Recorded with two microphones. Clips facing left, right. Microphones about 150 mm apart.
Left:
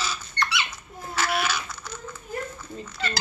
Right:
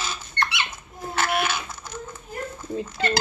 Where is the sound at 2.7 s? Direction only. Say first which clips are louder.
Right 8 dB; 55° right (ahead or behind).